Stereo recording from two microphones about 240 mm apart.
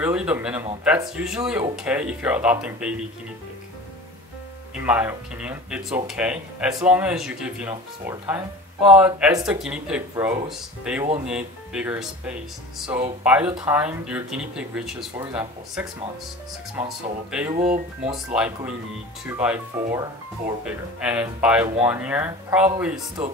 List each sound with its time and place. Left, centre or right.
0.0 s speech: centre
4.7 s speech: centre
17.3 s speech: centre
17.6 s speech: right
18.3 s speech: centre